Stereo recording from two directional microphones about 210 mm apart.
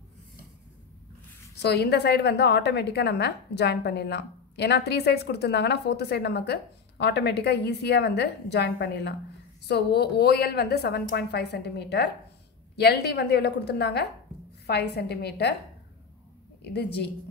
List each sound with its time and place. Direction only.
1.6 s a woman's voice: 50° left (ahead or behind)
16.6 s a woman's voice: 50° left (ahead or behind)